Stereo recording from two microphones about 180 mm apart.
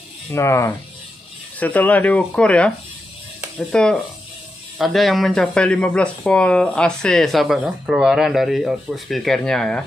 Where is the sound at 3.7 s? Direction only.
5° left (ahead or behind).